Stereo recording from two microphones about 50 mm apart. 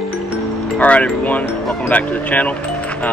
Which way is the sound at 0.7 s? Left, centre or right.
Left.